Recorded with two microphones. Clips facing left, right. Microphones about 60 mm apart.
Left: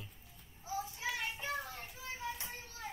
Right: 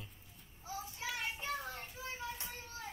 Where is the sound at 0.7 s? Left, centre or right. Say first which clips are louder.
Left 3 dB; left.